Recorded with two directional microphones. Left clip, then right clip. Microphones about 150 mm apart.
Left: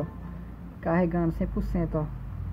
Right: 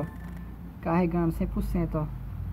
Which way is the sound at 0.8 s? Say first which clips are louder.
Left 1 dB; centre (ahead or behind).